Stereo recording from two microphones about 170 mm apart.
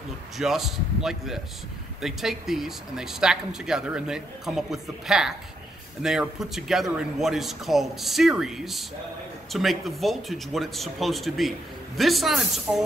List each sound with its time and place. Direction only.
0.4 s speech: centre (ahead or behind)